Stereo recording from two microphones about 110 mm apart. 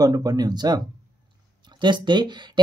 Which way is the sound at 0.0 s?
35° right (ahead or behind).